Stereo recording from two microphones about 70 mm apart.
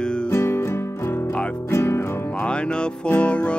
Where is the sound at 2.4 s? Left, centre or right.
Centre.